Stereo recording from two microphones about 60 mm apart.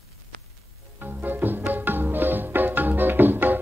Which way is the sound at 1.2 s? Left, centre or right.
Right.